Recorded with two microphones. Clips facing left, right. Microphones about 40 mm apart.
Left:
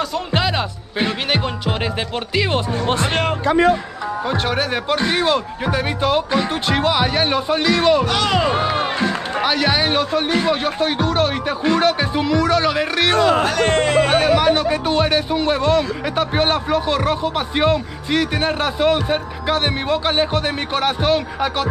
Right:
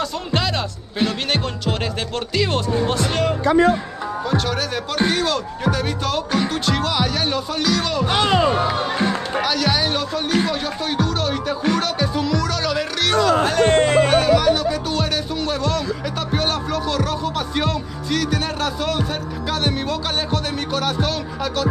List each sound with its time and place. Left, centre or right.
0.0 s speech: centre
2.9 s speech: left
8.1 s speech: right
8.5 s speech: left
9.4 s speech: left
13.4 s speech: left
14.1 s speech: left